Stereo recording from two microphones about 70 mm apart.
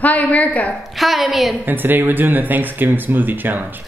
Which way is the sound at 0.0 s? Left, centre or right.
Left.